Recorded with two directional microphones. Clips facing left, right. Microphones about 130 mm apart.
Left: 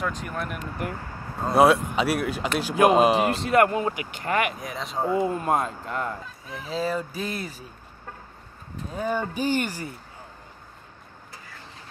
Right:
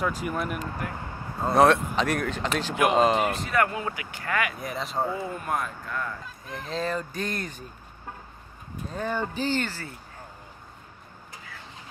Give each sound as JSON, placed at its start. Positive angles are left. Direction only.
{"t": 0.0, "sound": "speech", "side_deg": -5}
{"t": 3.2, "sound": "speech", "side_deg": 30}
{"t": 4.6, "sound": "speech", "side_deg": 0}
{"t": 5.1, "sound": "speech", "side_deg": 25}
{"t": 6.2, "sound": "speech", "side_deg": 0}
{"t": 8.9, "sound": "speech", "side_deg": 10}